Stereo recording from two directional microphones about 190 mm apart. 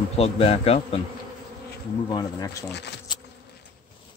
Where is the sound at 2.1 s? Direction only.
20° left (ahead or behind).